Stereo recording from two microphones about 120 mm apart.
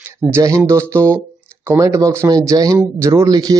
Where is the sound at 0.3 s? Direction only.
25° right (ahead or behind).